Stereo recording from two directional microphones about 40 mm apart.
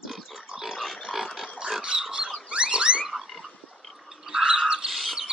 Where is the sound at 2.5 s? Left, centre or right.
Right.